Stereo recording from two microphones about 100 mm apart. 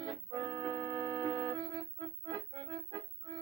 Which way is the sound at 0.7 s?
50° right (ahead or behind).